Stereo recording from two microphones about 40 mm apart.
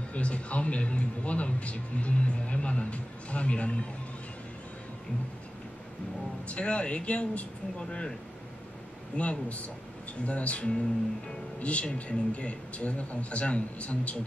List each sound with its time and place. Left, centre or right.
0.1 s speech: left
6.5 s speech: left
9.1 s speech: left
11.8 s speech: left